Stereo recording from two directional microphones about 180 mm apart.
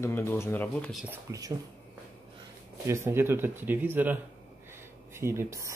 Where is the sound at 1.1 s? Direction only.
20° right (ahead or behind).